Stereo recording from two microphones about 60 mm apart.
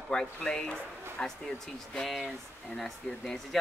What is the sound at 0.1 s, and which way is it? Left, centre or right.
Speech, centre.